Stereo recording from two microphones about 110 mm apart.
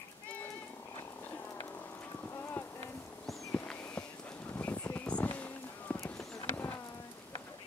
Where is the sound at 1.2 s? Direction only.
15° left (ahead or behind).